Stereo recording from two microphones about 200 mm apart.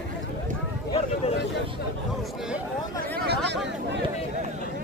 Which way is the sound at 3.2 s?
55° right (ahead or behind).